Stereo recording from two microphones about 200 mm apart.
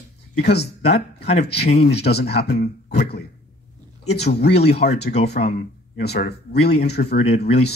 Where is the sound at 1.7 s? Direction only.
30° left (ahead or behind).